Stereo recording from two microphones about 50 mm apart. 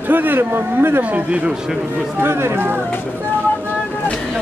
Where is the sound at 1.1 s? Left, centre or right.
Right.